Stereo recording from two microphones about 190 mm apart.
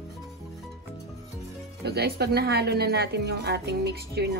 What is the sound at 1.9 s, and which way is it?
Speech, 55° right (ahead or behind).